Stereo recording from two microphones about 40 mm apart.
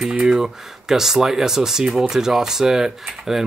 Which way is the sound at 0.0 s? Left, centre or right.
Right.